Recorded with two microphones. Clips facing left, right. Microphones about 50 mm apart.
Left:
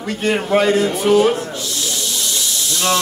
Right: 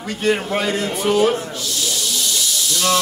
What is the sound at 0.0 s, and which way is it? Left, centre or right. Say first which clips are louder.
Speech: even; centre.